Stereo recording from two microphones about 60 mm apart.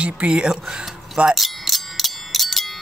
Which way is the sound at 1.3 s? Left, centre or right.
Centre.